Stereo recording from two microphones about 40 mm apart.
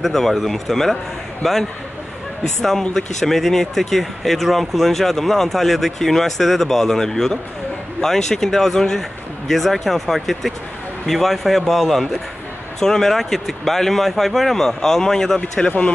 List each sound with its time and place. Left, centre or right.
0.0 s speech: centre
3.2 s speech: centre